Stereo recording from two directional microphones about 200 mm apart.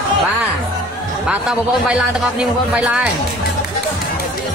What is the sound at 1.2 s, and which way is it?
Speech, 5° right (ahead or behind).